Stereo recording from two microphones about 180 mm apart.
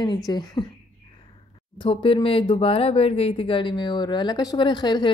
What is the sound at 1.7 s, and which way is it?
Speech, 30° left (ahead or behind).